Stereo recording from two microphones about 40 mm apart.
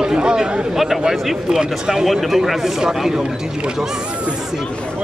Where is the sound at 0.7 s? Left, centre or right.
Centre.